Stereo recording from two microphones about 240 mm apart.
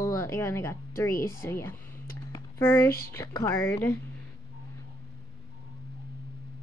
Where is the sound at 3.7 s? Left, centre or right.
Centre.